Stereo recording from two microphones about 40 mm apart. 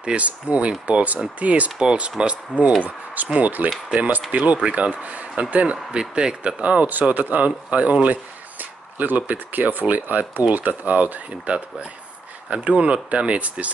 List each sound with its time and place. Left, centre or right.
0.0 s speech: right
1.8 s speech: right
3.3 s speech: right
6.9 s speech: right